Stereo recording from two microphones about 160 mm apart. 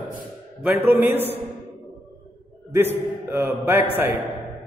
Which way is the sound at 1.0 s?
10° right (ahead or behind).